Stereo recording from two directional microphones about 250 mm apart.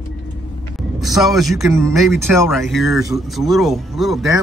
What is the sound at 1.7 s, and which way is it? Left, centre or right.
Speech, centre.